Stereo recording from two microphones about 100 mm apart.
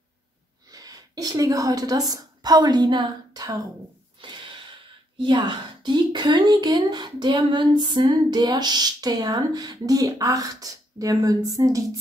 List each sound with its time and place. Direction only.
0.7 s a woman's voice: 40° right (ahead or behind)
4.2 s a sound: 55° right (ahead or behind)
5.2 s a woman's voice: 50° right (ahead or behind); by 12.0 s 35° right (ahead or behind)